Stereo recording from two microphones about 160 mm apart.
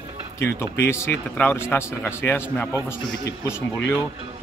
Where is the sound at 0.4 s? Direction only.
15° left (ahead or behind).